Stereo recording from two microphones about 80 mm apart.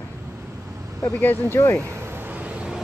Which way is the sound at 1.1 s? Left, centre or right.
Left.